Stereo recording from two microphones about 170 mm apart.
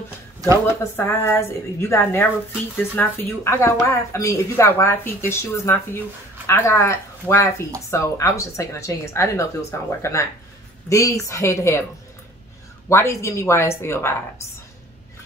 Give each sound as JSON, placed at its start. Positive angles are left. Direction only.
{"t": 0.9, "sound": "speech", "side_deg": 15}
{"t": 12.9, "sound": "speech", "side_deg": 15}